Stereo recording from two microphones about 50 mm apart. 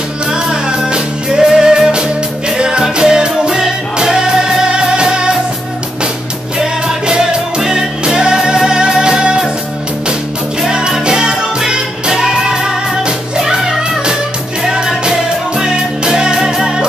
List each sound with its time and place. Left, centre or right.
0.3 s music: centre
6.6 s music: centre
10.6 s music: centre
14.6 s music: centre